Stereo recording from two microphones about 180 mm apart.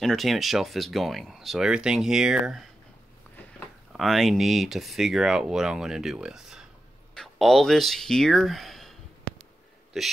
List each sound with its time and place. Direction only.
0.0 s speech: centre (ahead or behind)
9.9 s speech: centre (ahead or behind)